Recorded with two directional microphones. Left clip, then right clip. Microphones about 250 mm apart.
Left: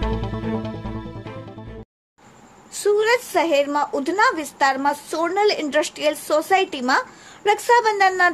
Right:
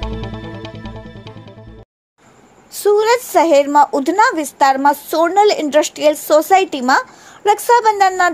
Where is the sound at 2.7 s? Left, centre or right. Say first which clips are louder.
Right 5 dB; centre.